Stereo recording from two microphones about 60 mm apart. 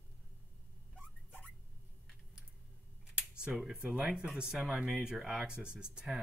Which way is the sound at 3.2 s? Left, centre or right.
Centre.